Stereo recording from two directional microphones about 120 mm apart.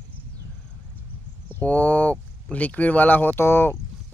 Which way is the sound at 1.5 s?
15° left (ahead or behind).